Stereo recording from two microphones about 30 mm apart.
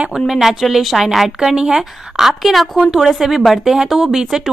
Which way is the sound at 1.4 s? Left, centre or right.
Right.